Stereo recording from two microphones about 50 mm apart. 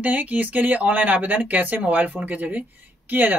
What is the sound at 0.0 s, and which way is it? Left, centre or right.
Speech, right.